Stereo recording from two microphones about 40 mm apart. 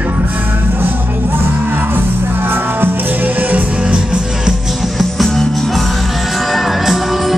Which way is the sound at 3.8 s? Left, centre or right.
Right.